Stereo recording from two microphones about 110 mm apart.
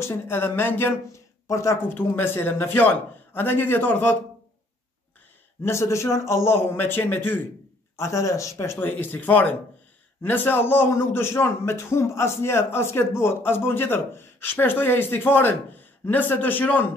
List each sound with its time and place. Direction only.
0.0 s a man's voice: 20° left (ahead or behind)
5.6 s a man's voice: 25° left (ahead or behind)